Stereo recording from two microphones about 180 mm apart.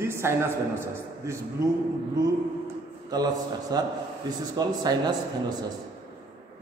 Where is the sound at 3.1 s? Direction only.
20° right (ahead or behind).